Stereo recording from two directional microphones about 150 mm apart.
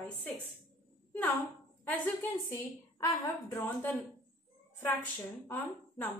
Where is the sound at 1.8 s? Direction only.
15° left (ahead or behind).